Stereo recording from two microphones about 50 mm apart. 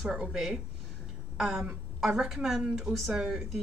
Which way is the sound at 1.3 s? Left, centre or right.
Centre.